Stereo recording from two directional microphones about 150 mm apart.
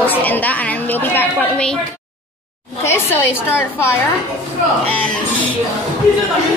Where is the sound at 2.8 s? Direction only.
15° left (ahead or behind).